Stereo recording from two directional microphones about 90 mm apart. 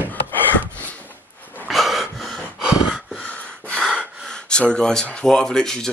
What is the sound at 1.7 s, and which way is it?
Gasp, centre (ahead or behind).